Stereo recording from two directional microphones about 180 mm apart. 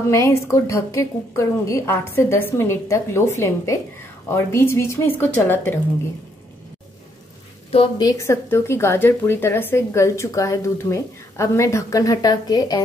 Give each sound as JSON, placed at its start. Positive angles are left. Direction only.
{"t": 0.1, "sound": "speech", "side_deg": 15}
{"t": 7.7, "sound": "speech", "side_deg": 25}